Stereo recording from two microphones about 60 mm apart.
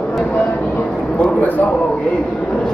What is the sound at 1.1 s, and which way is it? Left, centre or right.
Speech, left.